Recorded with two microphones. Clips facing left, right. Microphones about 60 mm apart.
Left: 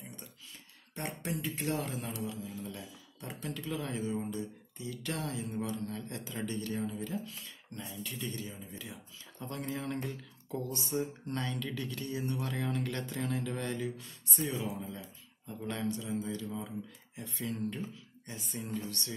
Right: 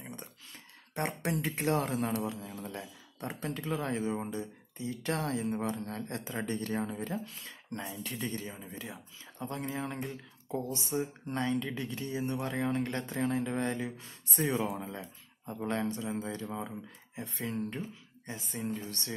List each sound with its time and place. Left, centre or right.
0.0 s a sound: right
1.0 s speech: right
2.5 s speech: right
9.4 s speech: right
14.4 s speech: right